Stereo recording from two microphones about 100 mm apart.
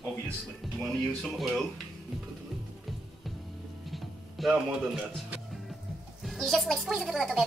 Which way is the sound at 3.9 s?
Centre (ahead or behind).